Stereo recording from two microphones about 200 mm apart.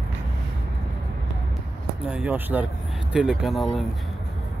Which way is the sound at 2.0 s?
5° right (ahead or behind).